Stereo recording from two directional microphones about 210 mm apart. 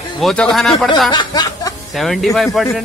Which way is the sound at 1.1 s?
20° left (ahead or behind).